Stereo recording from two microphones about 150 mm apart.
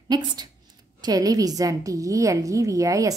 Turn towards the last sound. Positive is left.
turn(degrees=-20)  # may be behind; listen again after turning